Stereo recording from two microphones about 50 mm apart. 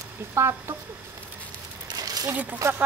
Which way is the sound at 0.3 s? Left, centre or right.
Right.